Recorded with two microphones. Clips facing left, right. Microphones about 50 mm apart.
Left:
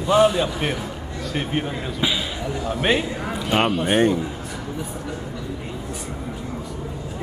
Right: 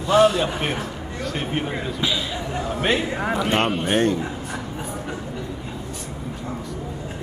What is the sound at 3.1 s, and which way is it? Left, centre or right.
Speech, right.